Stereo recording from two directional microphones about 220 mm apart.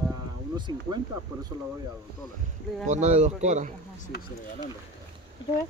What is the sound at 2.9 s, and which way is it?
Speech, 30° right (ahead or behind).